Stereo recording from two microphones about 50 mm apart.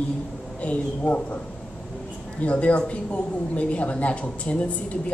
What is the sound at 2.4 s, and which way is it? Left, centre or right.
A woman's voice, left.